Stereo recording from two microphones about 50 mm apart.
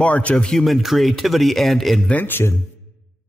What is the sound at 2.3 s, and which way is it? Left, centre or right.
Speech, left.